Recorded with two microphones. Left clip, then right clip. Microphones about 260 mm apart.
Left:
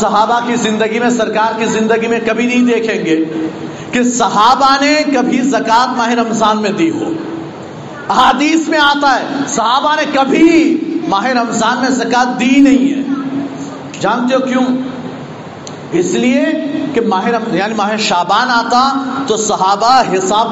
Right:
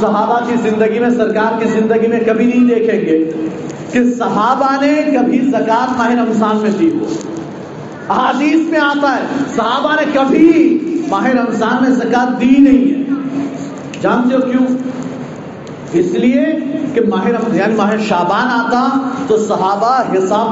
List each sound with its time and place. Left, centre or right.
0.7 s a man's voice: left
8.1 s a man's voice: left
14.0 s a man's voice: left
16.1 s a man's voice: left